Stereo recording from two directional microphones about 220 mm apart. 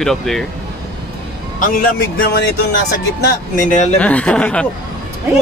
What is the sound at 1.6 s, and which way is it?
Speech, 40° left (ahead or behind).